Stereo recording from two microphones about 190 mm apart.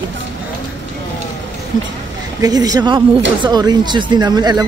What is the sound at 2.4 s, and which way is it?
Speech, 20° right (ahead or behind).